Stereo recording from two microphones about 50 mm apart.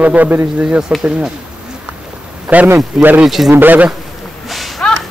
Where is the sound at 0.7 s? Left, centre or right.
Centre.